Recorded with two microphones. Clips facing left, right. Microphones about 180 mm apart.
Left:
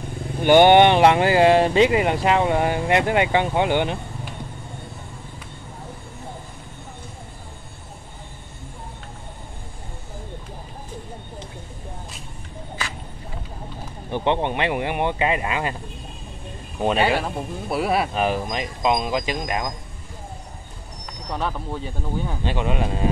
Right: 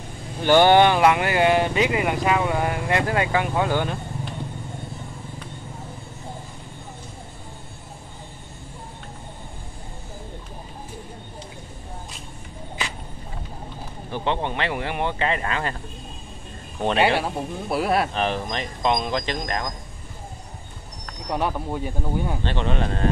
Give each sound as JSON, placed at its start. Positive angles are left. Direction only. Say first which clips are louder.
{"t": 0.4, "sound": "speech", "louder": "left 3 dB", "side_deg": 15}
{"t": 14.1, "sound": "speech", "louder": "left 4 dB", "side_deg": 20}
{"t": 17.2, "sound": "speech", "louder": "right 1 dB", "side_deg": 0}
{"t": 21.3, "sound": "speech", "louder": "right 2 dB", "side_deg": -15}
{"t": 22.4, "sound": "speech", "louder": "left 1 dB", "side_deg": 10}